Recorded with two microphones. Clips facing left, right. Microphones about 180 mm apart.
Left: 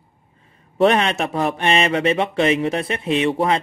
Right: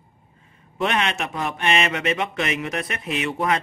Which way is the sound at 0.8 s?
35° left (ahead or behind).